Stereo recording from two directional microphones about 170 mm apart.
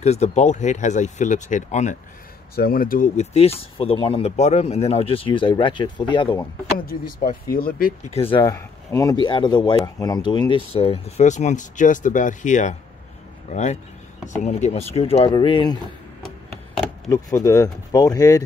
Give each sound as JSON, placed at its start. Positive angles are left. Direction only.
{"t": 0.0, "sound": "speech", "side_deg": 40}
{"t": 2.5, "sound": "speech", "side_deg": 60}
{"t": 3.2, "sound": "speech", "side_deg": 35}
{"t": 6.9, "sound": "speech", "side_deg": 60}
{"t": 8.1, "sound": "speech", "side_deg": 35}
{"t": 8.4, "sound": "speech", "side_deg": 20}
{"t": 17.1, "sound": "speech", "side_deg": 20}